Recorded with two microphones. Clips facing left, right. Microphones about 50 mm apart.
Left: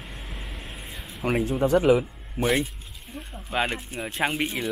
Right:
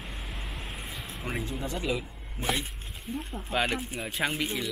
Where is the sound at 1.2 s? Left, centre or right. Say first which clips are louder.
Left 11 dB; left.